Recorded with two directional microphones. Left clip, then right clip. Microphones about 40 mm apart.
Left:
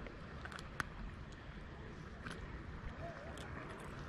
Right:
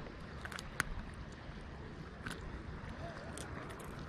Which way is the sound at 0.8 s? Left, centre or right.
Right.